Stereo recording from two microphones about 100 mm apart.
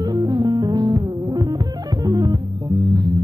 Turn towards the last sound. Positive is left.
turn(degrees=-40)  # may be behind; listen again after turning